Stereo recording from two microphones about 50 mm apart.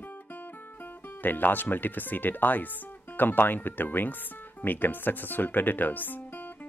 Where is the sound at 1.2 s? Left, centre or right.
Left.